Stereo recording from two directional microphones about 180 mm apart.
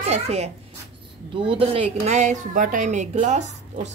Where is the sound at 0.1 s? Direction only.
35° right (ahead or behind).